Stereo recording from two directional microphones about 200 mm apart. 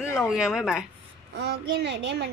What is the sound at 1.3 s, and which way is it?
Speech, 60° right (ahead or behind).